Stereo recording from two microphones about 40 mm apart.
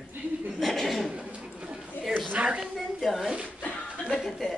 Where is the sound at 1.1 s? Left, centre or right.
Right.